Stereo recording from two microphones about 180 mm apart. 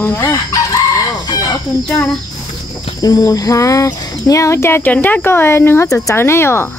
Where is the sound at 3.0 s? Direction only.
20° left (ahead or behind).